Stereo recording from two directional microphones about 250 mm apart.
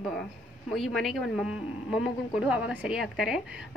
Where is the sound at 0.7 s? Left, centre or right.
Centre.